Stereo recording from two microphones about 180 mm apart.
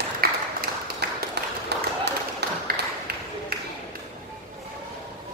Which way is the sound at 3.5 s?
55° right (ahead or behind).